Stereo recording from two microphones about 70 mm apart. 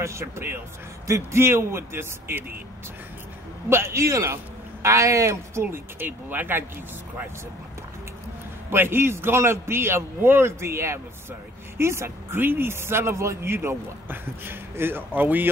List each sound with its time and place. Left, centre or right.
0.0 s speech: right
3.6 s a man's voice: right
8.6 s speech: right